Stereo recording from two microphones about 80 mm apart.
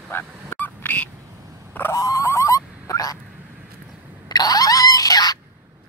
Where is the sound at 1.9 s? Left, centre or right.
Left.